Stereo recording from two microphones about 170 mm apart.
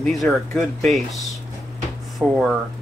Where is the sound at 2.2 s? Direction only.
5° right (ahead or behind).